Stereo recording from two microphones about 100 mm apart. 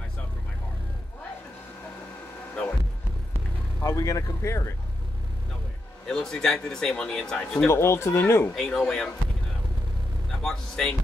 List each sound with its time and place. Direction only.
3.8 s speech: 35° left (ahead or behind)
6.0 s speech: 5° left (ahead or behind)
7.6 s speech: 25° left (ahead or behind)
8.5 s speech: 5° left (ahead or behind)
10.4 s speech: 5° left (ahead or behind)